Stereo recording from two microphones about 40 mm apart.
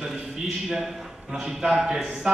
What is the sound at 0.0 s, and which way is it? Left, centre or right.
A man's voice, centre.